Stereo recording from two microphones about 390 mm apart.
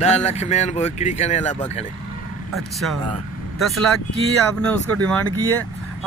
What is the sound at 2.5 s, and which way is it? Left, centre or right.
Speech, centre.